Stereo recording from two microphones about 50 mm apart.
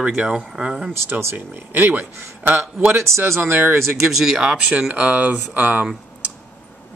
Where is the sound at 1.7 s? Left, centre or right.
Right.